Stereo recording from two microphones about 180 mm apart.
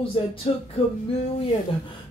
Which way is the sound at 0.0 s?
30° left (ahead or behind).